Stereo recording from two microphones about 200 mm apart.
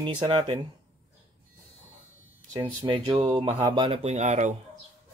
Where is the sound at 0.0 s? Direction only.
25° right (ahead or behind).